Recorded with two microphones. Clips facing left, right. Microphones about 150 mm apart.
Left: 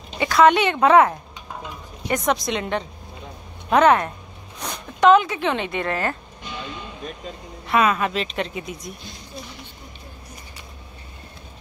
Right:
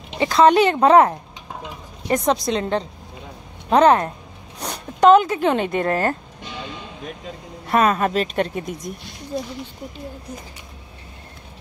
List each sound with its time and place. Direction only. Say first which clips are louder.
0.2 s speech: right 2 dB; 30° right (ahead or behind)
7.6 s speech: right 2 dB; 40° right (ahead or behind)